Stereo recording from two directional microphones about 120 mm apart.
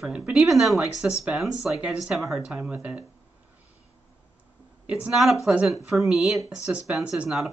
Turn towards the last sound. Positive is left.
turn(degrees=0)  # may be behind; listen again after turning